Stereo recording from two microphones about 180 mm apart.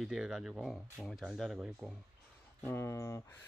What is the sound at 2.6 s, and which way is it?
Speech, 15° left (ahead or behind).